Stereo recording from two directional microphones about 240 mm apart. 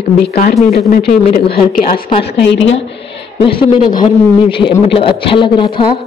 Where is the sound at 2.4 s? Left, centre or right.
Left.